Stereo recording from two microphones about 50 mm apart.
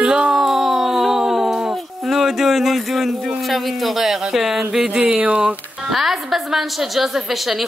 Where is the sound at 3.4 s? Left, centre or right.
Centre; by 5.4 s right.